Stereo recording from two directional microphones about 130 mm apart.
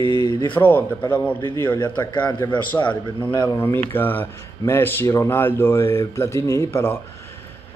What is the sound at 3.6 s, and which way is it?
A man's voice, 20° left (ahead or behind).